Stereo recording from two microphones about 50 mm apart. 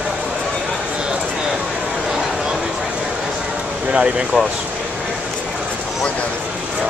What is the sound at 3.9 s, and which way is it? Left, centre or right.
Speech, right.